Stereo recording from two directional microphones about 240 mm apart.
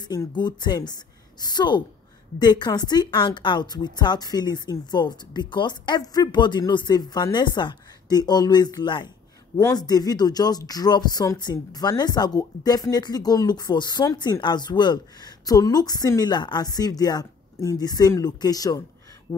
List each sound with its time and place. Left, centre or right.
0.0 s speech: centre